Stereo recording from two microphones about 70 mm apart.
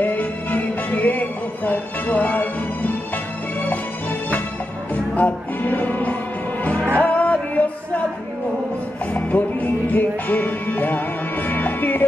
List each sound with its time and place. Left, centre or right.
0.0 s music: left
4.9 s music: left
9.1 s music: left